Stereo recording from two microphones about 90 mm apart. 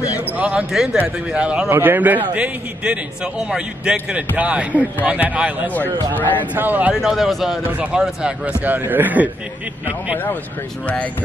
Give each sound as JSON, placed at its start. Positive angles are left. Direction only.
{"t": 0.4, "sound": "a man's voice", "side_deg": -10}
{"t": 1.7, "sound": "a man's voice", "side_deg": -20}
{"t": 5.8, "sound": "speech", "side_deg": 20}
{"t": 6.5, "sound": "speech", "side_deg": -20}
{"t": 6.9, "sound": "speech", "side_deg": -5}
{"t": 7.6, "sound": "a man's voice", "side_deg": -15}